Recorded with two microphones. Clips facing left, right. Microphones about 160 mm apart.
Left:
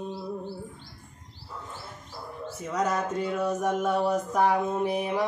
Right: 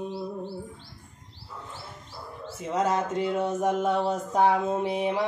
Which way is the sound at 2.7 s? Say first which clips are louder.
Right 2 dB; 25° right (ahead or behind).